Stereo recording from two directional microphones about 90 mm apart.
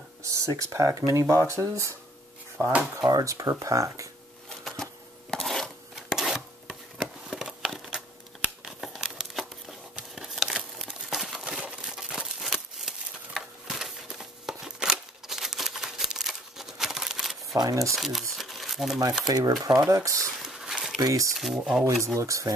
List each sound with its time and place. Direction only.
0.2 s speech: 35° right (ahead or behind)
2.5 s speech: 20° right (ahead or behind)
3.1 s speech: 40° right (ahead or behind)
4.5 s a sound: 5° left (ahead or behind)
5.3 s chopping: 5° left (ahead or behind)
7.2 s a sound: 5° right (ahead or behind)
8.6 s crumpling: centre (ahead or behind)
17.6 s crumpling: 45° right (ahead or behind)
17.8 s crumpling: centre (ahead or behind)
19.2 s speech: 45° right (ahead or behind)
20.4 s a sound: 5° right (ahead or behind)
21.0 s speech: 40° right (ahead or behind)
21.3 s speech: centre (ahead or behind)
22.0 s speech: 35° right (ahead or behind)